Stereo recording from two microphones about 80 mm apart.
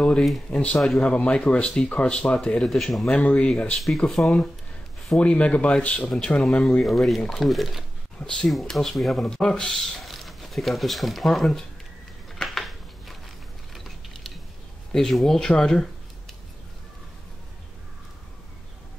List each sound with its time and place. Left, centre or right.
0.5 s speech: centre
3.2 s speech: centre
12.4 s a sound: centre
13.7 s mechanisms: centre
14.9 s speech: centre